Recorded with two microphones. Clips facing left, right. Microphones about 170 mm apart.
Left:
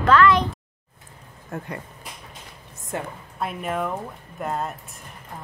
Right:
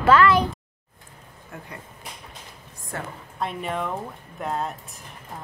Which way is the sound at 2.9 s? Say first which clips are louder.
Left 4 dB; 20° left (ahead or behind).